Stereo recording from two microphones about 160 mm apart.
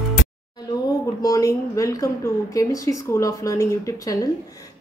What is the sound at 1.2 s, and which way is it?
A woman's voice, 20° left (ahead or behind).